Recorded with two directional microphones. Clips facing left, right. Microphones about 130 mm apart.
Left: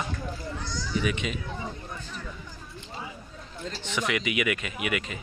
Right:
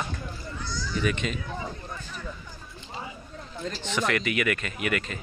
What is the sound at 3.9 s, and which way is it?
Speech, 10° left (ahead or behind).